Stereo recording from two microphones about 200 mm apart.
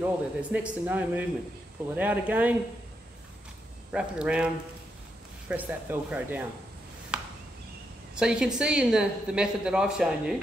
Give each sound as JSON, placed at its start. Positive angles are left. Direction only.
{"t": 0.0, "sound": "speech", "side_deg": -5}
{"t": 3.9, "sound": "a woman's voice", "side_deg": -5}
{"t": 5.5, "sound": "speech", "side_deg": -10}
{"t": 7.1, "sound": "a sound", "side_deg": -5}
{"t": 8.1, "sound": "a woman's voice", "side_deg": -5}